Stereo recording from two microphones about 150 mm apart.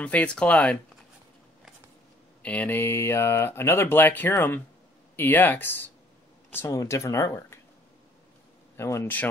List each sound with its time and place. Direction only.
0.0 s speech: 10° left (ahead or behind)
2.4 s speech: 10° left (ahead or behind)
8.7 s speech: 20° left (ahead or behind)